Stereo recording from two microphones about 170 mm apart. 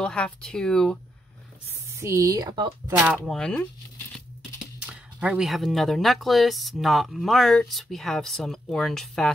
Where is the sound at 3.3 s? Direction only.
5° left (ahead or behind).